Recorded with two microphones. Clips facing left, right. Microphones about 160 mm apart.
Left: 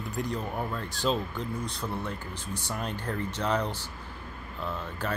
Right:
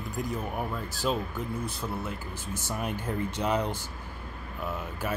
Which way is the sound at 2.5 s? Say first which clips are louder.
Right 1 dB; 15° left (ahead or behind).